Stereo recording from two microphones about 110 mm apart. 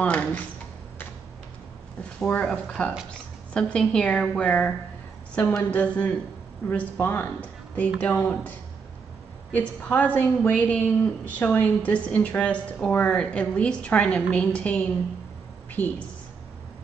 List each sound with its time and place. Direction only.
0.0 s a woman's voice: 10° left (ahead or behind)
2.1 s a woman's voice: 10° left (ahead or behind)